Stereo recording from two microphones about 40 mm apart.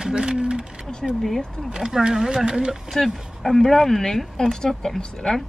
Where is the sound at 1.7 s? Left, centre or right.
Centre.